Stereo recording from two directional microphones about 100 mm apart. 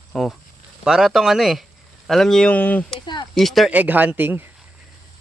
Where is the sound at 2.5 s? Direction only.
15° left (ahead or behind).